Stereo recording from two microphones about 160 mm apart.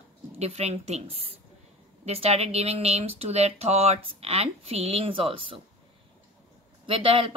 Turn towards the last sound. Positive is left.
turn(degrees=-35)  # may be behind; listen again after turning